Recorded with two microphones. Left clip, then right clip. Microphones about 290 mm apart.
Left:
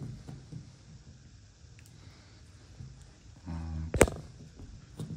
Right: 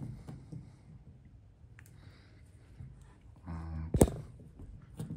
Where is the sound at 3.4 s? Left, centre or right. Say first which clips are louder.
Left 3 dB; centre.